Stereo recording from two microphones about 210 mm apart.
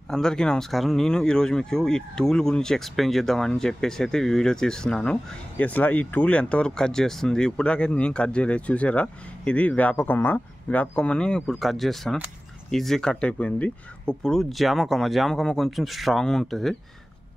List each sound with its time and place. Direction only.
0.1 s speech: 5° left (ahead or behind)